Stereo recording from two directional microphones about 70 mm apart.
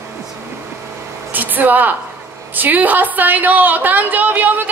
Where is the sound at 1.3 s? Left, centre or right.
Right.